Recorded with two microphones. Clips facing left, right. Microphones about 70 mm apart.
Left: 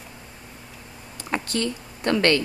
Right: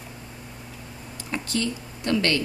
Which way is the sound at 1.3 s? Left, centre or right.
Left.